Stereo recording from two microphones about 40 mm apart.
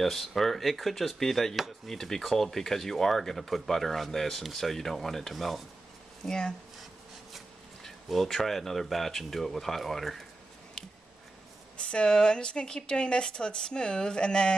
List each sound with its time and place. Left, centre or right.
0.0 s speech: centre
6.2 s speech: centre
7.8 s speech: centre
11.7 s speech: left